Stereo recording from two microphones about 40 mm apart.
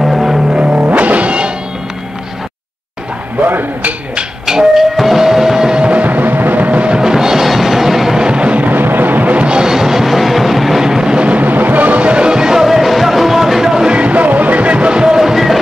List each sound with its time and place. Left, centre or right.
0.0 s music: centre
0.6 s music: right
3.4 s a sound: right
4.5 s music: centre
5.8 s music: right
6.0 s music: right
7.0 s music: centre
8.2 s music: right
8.6 s music: right
9.3 s music: right
9.6 s vehicle: centre
11.2 s music: right
12.0 s music: right; by 13.8 s centre
13.8 s music: right; by 15.5 s centre